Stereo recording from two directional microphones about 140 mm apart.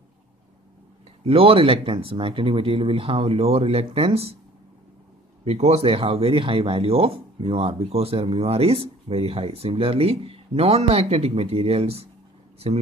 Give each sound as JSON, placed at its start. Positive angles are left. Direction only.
{"t": 1.2, "sound": "speech", "side_deg": -45}
{"t": 5.4, "sound": "speech", "side_deg": -50}